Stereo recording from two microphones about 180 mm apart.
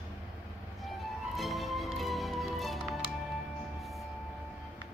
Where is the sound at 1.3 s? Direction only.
Centre (ahead or behind).